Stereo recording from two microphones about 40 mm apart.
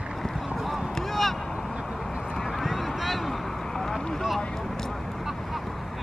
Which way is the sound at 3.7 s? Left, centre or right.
Centre.